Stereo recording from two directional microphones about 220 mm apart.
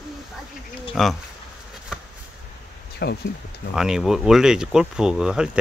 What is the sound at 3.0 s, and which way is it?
Speech, 50° left (ahead or behind).